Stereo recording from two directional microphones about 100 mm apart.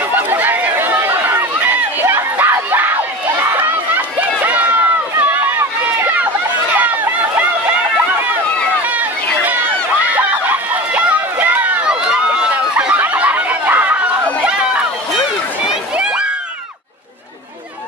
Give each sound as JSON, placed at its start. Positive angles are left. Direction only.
{"t": 0.3, "sound": "chatter", "side_deg": -20}
{"t": 3.5, "sound": "crowd", "side_deg": -20}
{"t": 4.5, "sound": "run", "side_deg": -15}
{"t": 6.7, "sound": "chatter", "side_deg": -15}
{"t": 8.8, "sound": "run", "side_deg": -15}
{"t": 12.9, "sound": "a sound", "side_deg": -15}
{"t": 14.4, "sound": "run", "side_deg": -10}
{"t": 15.7, "sound": "a sound", "side_deg": -10}